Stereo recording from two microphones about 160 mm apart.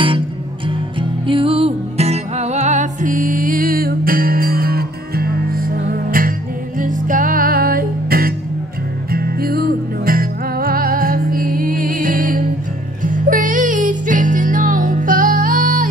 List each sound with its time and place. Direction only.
0.7 s music: 30° right (ahead or behind); by 15.9 s 60° right (ahead or behind)